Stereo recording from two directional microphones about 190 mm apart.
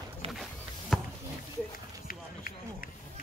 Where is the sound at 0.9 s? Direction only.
Centre (ahead or behind).